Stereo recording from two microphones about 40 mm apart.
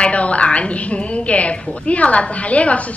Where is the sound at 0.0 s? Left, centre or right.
Left.